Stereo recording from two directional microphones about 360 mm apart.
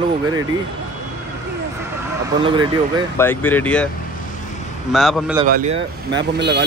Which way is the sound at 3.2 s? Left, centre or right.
Centre.